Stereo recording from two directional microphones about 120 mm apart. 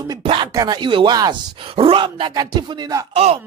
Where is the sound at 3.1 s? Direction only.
55° right (ahead or behind).